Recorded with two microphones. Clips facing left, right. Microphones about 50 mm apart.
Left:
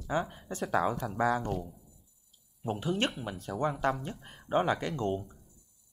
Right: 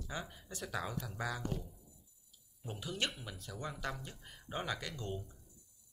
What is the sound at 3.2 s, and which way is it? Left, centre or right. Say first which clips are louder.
Speech: left 12 dB; left.